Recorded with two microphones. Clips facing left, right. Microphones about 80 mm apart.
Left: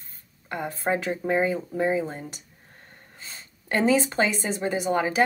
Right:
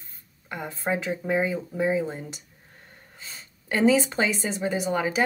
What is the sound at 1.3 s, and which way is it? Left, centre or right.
Speech, centre.